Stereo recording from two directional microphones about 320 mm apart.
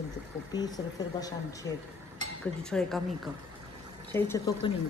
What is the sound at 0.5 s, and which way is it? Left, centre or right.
Speech, centre.